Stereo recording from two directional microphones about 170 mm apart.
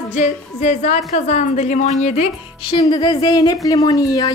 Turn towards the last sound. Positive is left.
turn(degrees=20)  # may be behind; listen again after turning